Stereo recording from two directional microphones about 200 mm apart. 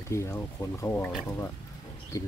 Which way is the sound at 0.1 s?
15° left (ahead or behind).